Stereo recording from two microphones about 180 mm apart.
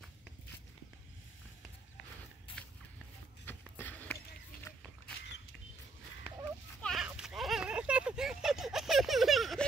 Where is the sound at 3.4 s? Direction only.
10° left (ahead or behind).